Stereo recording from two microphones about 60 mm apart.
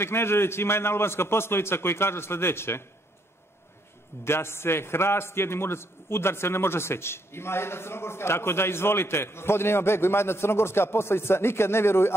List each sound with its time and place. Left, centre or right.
0.0 s a man's voice: left
4.2 s a man's voice: left